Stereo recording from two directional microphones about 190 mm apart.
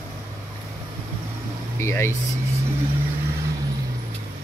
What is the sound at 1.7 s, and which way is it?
Speech, 15° left (ahead or behind).